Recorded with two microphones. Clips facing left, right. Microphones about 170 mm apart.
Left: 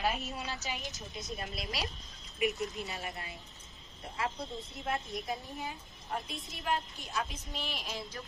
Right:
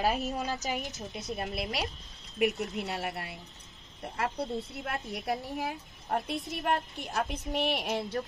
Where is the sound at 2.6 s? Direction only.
70° right (ahead or behind).